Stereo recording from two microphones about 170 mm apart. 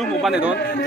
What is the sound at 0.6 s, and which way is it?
Speech, 70° left (ahead or behind).